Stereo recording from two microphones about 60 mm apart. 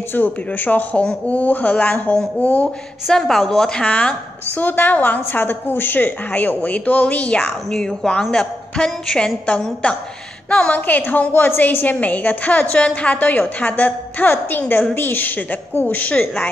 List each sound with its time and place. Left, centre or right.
0.1 s a woman's voice: left
3.1 s a woman's voice: centre
3.8 s a woman's voice: left
7.7 s a woman's voice: centre
9.5 s a woman's voice: left